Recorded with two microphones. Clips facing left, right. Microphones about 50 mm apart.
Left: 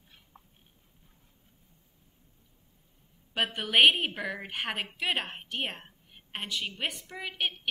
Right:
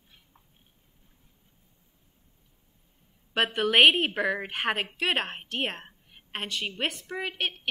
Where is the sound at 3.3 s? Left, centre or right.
Right.